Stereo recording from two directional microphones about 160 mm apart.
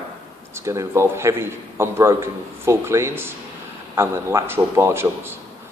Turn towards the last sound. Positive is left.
turn(degrees=-15)  # may be behind; listen again after turning